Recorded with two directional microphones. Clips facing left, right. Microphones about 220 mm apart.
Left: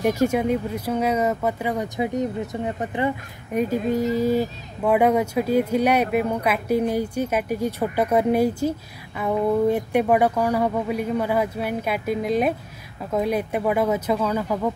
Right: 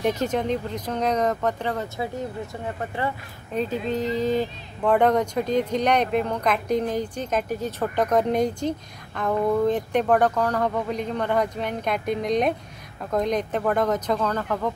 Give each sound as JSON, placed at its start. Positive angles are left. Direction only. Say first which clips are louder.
{"t": 0.0, "sound": "speech", "louder": "left 3 dB", "side_deg": 10}